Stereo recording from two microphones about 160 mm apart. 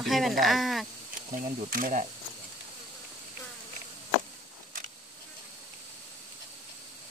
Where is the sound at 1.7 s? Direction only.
55° right (ahead or behind).